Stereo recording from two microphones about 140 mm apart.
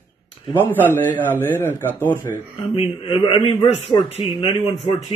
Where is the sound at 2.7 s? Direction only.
40° left (ahead or behind).